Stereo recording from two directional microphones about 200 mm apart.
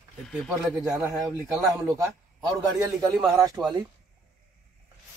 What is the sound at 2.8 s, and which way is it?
Speech, 15° right (ahead or behind).